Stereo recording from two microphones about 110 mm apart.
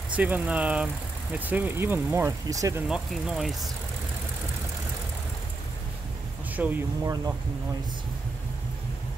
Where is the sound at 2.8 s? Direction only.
5° right (ahead or behind).